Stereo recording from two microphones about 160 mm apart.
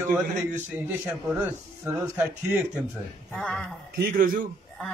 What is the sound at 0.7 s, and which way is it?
A man's voice, 10° right (ahead or behind).